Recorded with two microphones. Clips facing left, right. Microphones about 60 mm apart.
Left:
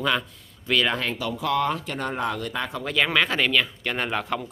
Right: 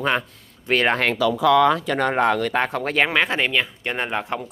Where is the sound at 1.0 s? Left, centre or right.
Right.